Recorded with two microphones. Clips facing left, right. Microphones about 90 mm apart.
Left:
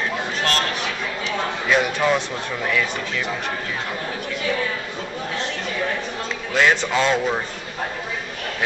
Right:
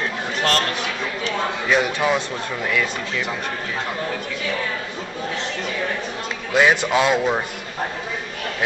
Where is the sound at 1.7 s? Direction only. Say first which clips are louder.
Left 1 dB; centre (ahead or behind).